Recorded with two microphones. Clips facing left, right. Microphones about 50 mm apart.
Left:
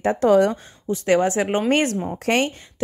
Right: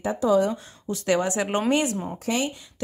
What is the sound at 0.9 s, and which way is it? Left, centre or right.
Speech, left.